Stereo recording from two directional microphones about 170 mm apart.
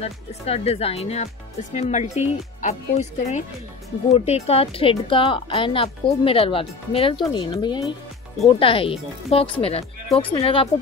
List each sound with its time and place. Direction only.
0.0 s speech: 35° left (ahead or behind)